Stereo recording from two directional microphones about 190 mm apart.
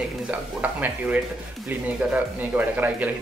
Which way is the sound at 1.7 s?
10° right (ahead or behind).